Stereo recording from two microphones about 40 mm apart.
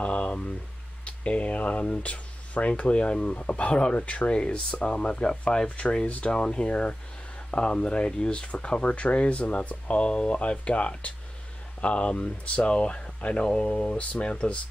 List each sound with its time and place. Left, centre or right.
0.0 s speech: left
5.1 s speech: centre; by 6.3 s left
6.3 s speech: left